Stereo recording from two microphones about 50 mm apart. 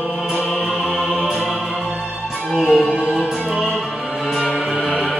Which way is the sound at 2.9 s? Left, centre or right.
Centre.